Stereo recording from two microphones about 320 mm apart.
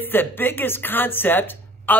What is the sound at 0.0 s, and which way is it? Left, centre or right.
A man's voice, centre.